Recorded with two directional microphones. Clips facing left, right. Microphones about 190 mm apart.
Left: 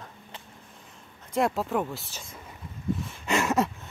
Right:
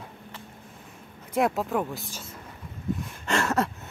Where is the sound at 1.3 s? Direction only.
Centre (ahead or behind).